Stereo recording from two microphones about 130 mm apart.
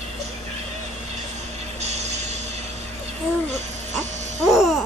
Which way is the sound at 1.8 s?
60° right (ahead or behind).